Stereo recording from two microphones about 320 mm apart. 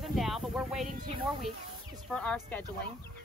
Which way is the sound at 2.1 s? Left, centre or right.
Centre.